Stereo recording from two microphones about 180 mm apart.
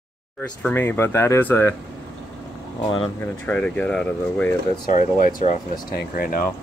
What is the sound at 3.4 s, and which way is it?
Speech, 5° left (ahead or behind).